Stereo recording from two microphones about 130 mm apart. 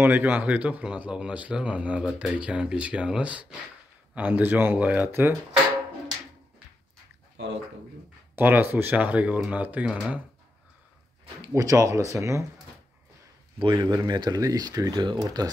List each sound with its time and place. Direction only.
0.0 s speech: 15° right (ahead or behind)
8.4 s speech: 15° right (ahead or behind)
11.5 s speech: 25° right (ahead or behind)
13.6 s speech: 35° right (ahead or behind)